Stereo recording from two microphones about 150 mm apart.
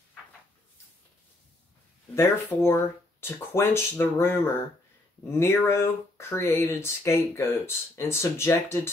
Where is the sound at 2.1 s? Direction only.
15° left (ahead or behind).